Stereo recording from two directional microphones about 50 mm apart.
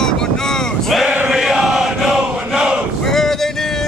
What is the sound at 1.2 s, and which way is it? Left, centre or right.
Chant, centre.